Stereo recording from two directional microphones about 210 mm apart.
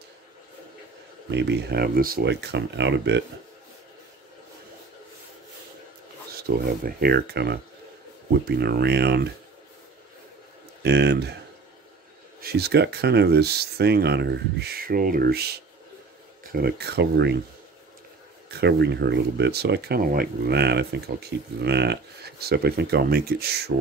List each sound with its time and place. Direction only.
1.3 s speech: 55° right (ahead or behind)
6.4 s speech: 50° right (ahead or behind)
10.8 s speech: 50° right (ahead or behind)
12.4 s speech: 50° right (ahead or behind)
18.5 s speech: 55° right (ahead or behind)